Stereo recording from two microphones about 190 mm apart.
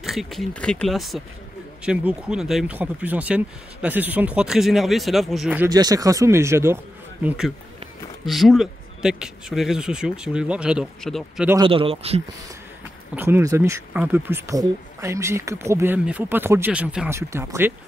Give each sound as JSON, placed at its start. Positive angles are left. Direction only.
{"t": 0.0, "sound": "speech", "side_deg": 0}
{"t": 5.7, "sound": "speech", "side_deg": -20}
{"t": 7.2, "sound": "speech", "side_deg": -5}
{"t": 11.6, "sound": "speech", "side_deg": -30}
{"t": 13.1, "sound": "speech", "side_deg": -10}